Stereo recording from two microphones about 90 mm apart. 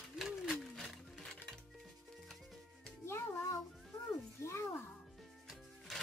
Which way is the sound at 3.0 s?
30° left (ahead or behind).